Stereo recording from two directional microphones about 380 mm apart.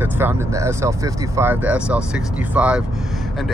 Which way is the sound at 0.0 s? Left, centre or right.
Centre.